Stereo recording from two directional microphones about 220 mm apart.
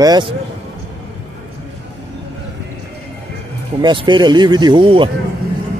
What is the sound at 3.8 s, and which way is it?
Speech, 20° right (ahead or behind).